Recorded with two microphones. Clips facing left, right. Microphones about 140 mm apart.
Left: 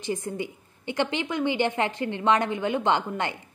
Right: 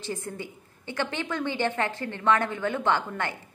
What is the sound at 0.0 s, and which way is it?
A woman's voice, 15° left (ahead or behind).